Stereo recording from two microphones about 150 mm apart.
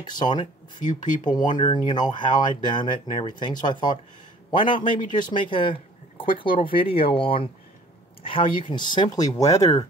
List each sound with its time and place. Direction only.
0.2 s speech: 30° left (ahead or behind)
0.7 s speech: 60° left (ahead or behind)
1.6 s speech: 30° left (ahead or behind)